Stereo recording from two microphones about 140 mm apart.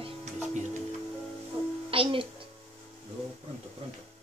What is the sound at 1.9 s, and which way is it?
Music, 40° right (ahead or behind).